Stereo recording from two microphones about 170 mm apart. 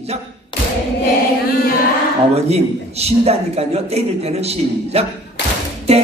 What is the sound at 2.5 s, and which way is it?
A man's voice, 40° right (ahead or behind).